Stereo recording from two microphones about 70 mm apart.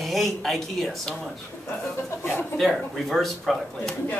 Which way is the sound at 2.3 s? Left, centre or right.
Centre.